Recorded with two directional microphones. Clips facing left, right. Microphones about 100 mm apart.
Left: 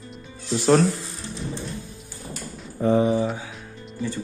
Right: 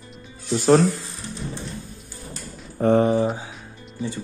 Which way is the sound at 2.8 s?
55° right (ahead or behind).